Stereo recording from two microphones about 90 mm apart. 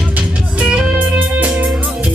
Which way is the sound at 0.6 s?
15° right (ahead or behind).